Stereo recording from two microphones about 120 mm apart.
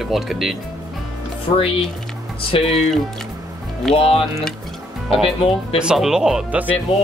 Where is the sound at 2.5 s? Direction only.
50° left (ahead or behind).